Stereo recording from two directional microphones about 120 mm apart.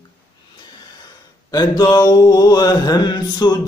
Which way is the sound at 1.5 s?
35° left (ahead or behind).